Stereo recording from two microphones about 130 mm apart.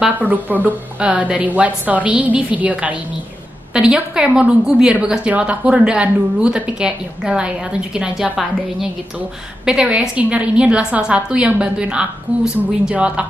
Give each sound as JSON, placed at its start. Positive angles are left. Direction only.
{"t": 0.0, "sound": "a woman's voice", "side_deg": -10}